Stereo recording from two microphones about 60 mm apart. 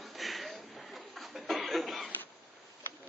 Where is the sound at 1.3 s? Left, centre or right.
Centre.